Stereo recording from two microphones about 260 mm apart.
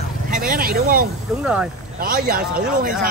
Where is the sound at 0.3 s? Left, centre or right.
Right.